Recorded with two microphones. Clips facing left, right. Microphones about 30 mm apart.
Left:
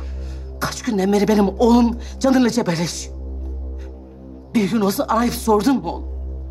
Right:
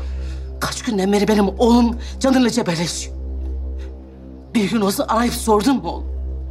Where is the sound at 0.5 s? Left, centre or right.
Centre.